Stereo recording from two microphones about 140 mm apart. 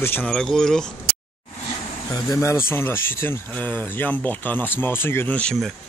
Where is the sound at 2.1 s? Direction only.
20° left (ahead or behind).